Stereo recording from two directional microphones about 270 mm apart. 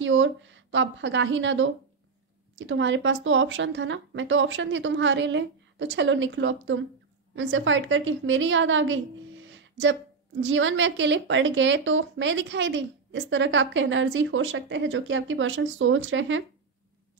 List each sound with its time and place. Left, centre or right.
0.0 s a woman's voice: right
9.5 s music: right
10.4 s a woman's voice: right